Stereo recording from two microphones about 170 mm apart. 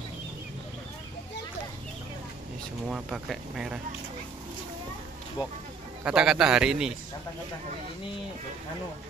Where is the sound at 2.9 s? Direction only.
5° right (ahead or behind).